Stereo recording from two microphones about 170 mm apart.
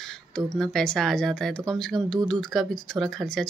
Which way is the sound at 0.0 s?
5° left (ahead or behind).